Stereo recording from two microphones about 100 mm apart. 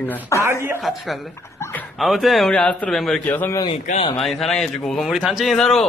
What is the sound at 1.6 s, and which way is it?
Dog, 25° left (ahead or behind).